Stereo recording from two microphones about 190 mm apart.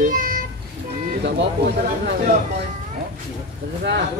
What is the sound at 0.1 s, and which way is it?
Children playing, 45° right (ahead or behind).